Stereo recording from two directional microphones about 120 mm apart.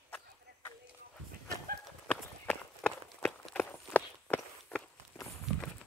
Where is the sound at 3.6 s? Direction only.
15° left (ahead or behind).